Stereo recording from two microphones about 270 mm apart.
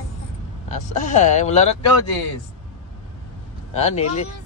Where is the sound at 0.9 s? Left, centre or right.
Left.